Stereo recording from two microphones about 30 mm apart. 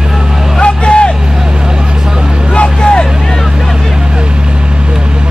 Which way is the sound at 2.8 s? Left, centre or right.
Left.